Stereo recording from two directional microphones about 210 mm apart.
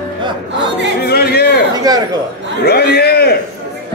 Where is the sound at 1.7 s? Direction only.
20° right (ahead or behind).